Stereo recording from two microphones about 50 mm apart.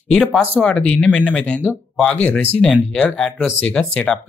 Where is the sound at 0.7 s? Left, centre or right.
Left.